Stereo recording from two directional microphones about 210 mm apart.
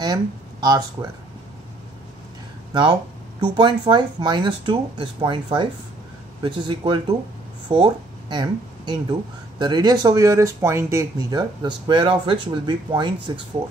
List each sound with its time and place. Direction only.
0.0 s speech: 20° right (ahead or behind)
2.7 s a sound: 20° right (ahead or behind)
3.5 s speech: 20° right (ahead or behind)